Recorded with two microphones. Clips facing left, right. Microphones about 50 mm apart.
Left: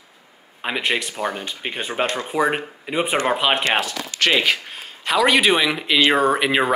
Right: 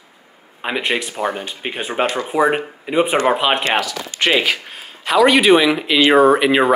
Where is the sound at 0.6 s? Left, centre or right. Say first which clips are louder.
Right 2 dB; centre.